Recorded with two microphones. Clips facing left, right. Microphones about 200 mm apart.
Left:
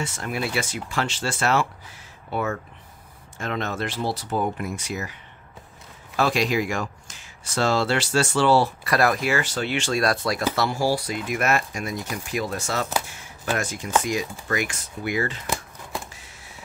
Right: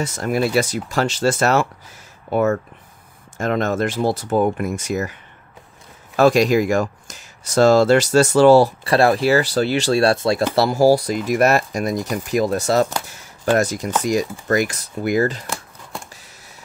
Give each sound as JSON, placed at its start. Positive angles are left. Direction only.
{"t": 0.0, "sound": "speech", "side_deg": -40}
{"t": 6.1, "sound": "speech", "side_deg": -45}
{"t": 13.1, "sound": "a sound", "side_deg": -40}
{"t": 14.0, "sound": "speech", "side_deg": -40}
{"t": 15.4, "sound": "shuffling cards", "side_deg": 0}